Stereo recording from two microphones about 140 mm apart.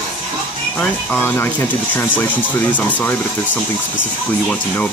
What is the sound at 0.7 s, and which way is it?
Speech, 15° left (ahead or behind).